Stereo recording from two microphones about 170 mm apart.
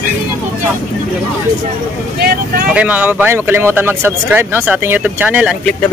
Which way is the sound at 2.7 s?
10° right (ahead or behind).